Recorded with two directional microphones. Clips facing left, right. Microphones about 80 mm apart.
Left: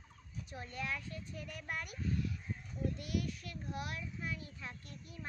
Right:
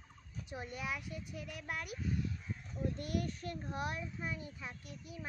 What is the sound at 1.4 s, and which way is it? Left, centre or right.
Speech, centre.